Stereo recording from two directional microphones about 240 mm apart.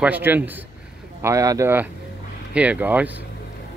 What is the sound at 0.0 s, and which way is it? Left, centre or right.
Speech, centre.